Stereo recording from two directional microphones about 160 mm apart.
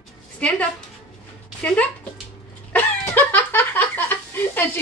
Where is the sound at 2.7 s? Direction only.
15° left (ahead or behind).